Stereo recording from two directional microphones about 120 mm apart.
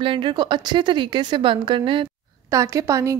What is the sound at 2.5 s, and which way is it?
Speech, 25° right (ahead or behind).